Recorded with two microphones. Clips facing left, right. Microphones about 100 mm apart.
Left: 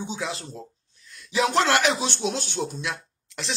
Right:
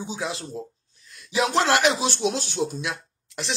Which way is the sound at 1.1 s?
35° right (ahead or behind).